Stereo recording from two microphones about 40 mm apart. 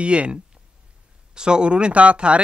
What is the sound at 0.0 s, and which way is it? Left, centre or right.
Speech, right.